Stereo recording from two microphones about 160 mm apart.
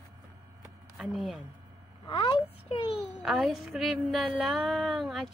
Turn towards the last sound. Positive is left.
turn(degrees=0)  # may be behind; listen again after turning